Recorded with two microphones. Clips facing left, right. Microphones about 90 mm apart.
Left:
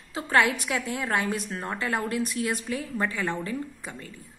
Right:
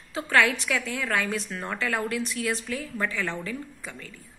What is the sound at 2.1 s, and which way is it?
Speech, 40° left (ahead or behind).